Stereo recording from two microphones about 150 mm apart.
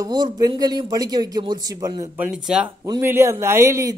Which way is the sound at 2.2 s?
5° right (ahead or behind).